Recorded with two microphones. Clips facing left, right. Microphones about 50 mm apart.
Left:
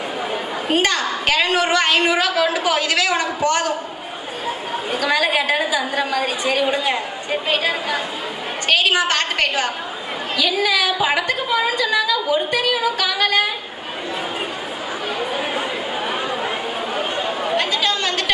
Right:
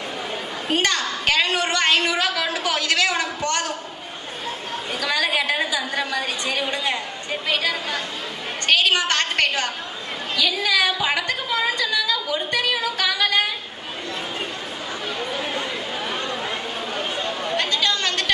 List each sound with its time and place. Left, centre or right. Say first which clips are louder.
0.7 s a woman's voice: left 3 dB; centre
4.9 s a woman's voice: left 4 dB; centre
15.1 s chatter: left 4 dB; centre